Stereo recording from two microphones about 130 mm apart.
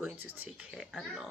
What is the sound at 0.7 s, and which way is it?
Speech, 5° right (ahead or behind).